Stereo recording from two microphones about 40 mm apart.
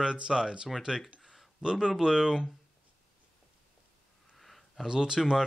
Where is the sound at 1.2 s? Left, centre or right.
Centre.